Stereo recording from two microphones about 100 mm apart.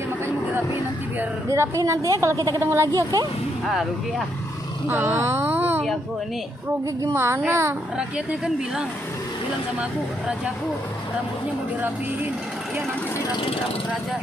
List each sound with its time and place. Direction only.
1.5 s a woman's voice: 30° right (ahead or behind)
2.9 s a woman's voice: 40° right (ahead or behind)
4.8 s speech: 20° right (ahead or behind)
7.0 s speech: 25° right (ahead or behind)
8.3 s a woman's voice: 5° right (ahead or behind)